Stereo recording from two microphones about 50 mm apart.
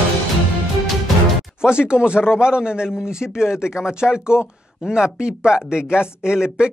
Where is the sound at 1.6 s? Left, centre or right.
Centre.